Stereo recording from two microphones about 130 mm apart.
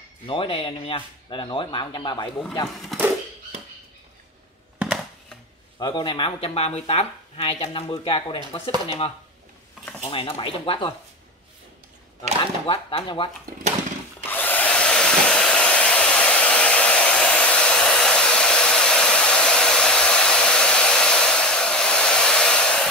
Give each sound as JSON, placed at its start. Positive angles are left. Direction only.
{"t": 0.3, "sound": "speech", "side_deg": 45}
{"t": 4.7, "sound": "a sound", "side_deg": -5}
{"t": 5.8, "sound": "speech", "side_deg": 35}
{"t": 12.6, "sound": "speech", "side_deg": 40}
{"t": 14.3, "sound": "hair dryer", "side_deg": 15}